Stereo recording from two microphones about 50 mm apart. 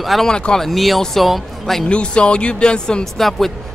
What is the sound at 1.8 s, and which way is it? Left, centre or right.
Speech, left.